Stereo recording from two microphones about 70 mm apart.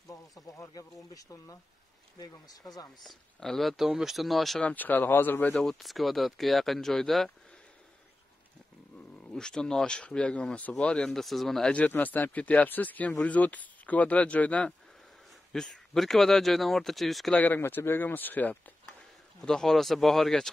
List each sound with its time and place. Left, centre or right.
0.1 s speech: left
3.0 s speech: centre
4.6 s speech: left
5.5 s speech: centre
9.3 s speech: centre
11.9 s speech: left
15.5 s speech: centre
17.6 s speech: left
19.4 s speech: centre